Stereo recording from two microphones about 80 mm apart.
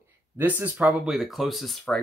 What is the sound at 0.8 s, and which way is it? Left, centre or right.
Speech, centre.